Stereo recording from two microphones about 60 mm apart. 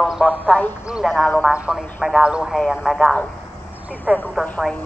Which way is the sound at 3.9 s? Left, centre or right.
Right.